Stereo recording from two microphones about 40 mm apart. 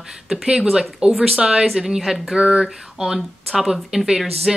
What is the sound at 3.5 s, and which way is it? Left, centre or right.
Speech, centre.